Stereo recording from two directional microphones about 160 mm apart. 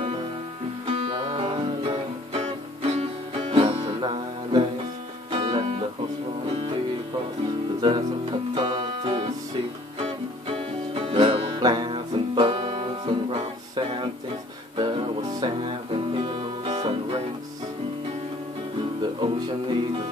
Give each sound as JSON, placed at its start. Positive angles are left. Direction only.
{"t": 1.0, "sound": "music", "side_deg": -30}
{"t": 7.8, "sound": "music", "side_deg": -30}
{"t": 18.9, "sound": "music", "side_deg": -30}